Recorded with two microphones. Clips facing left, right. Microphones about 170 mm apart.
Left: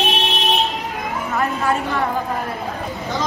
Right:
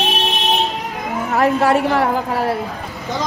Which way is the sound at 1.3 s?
70° right (ahead or behind).